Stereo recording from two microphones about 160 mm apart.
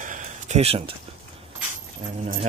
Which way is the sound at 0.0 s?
50° right (ahead or behind).